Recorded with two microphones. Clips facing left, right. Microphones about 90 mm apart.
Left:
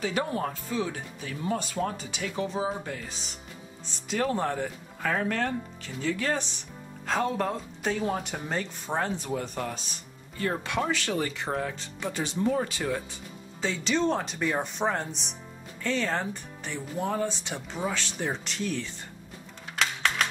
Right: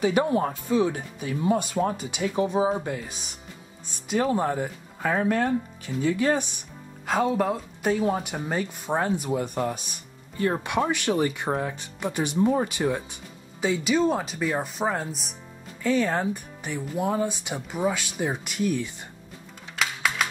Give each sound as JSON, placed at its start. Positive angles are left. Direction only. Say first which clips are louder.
{"t": 0.0, "sound": "speech", "louder": "right 7 dB", "side_deg": -15}
{"t": 19.8, "sound": "music", "louder": "right 1 dB", "side_deg": -10}